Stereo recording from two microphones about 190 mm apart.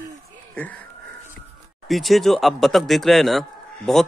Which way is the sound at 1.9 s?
Centre (ahead or behind).